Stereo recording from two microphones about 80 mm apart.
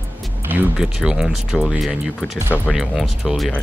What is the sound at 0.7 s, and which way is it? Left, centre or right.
Speech, centre.